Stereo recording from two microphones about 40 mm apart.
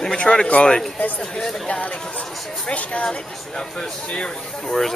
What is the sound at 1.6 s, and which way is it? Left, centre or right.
Speech, left.